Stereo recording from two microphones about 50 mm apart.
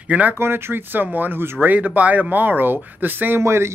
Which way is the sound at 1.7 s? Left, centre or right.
Right.